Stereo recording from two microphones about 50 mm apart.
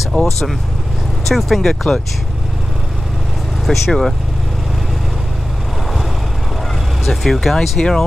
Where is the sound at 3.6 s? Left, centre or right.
Centre.